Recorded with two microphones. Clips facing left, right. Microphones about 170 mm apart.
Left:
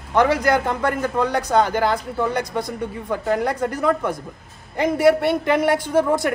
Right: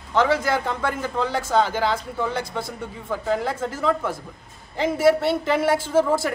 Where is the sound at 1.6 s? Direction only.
50° left (ahead or behind).